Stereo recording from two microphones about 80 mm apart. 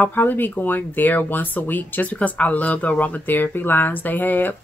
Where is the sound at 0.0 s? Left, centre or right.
Left.